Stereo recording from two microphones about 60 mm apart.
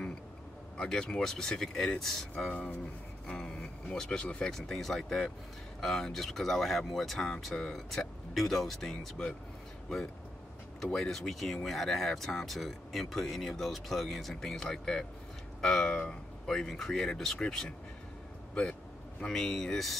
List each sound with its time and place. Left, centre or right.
0.7 s speech: centre
3.3 s speech: centre
11.0 s speech: centre
18.5 s a sound: centre
19.3 s speech: centre